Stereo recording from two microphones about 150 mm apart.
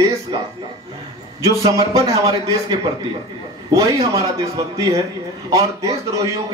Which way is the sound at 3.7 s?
20° right (ahead or behind).